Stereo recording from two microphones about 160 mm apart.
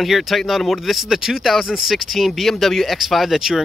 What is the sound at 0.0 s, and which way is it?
Speech, centre (ahead or behind).